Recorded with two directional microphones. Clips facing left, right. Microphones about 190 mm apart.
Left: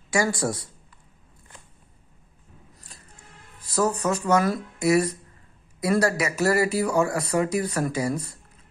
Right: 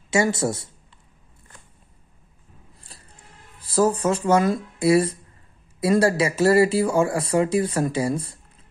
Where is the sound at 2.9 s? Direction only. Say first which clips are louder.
Right 3 dB; 35° right (ahead or behind).